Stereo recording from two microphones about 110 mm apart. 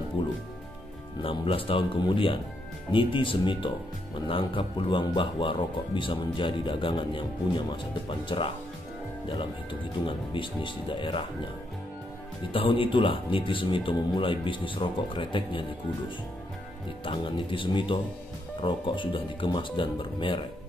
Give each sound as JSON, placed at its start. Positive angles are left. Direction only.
{"t": 0.2, "sound": "speech", "side_deg": 50}
{"t": 12.5, "sound": "speech", "side_deg": 55}
{"t": 17.0, "sound": "speech", "side_deg": 50}